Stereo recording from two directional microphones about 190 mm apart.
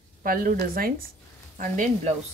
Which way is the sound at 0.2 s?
45° right (ahead or behind).